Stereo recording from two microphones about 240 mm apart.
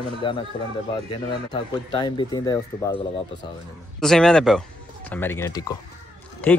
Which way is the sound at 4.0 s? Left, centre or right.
Centre.